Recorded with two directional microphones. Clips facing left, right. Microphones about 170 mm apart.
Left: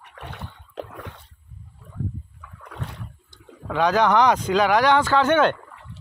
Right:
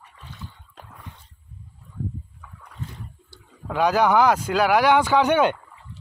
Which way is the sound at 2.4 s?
75° left (ahead or behind).